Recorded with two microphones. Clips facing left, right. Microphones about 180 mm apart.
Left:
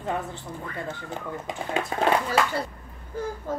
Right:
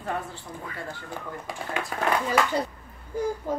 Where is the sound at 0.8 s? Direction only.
20° left (ahead or behind).